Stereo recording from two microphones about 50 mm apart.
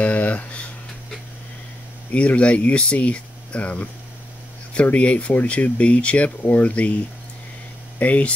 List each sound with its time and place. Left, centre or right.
0.0 s a sound: left
2.1 s speech: left
8.0 s speech: left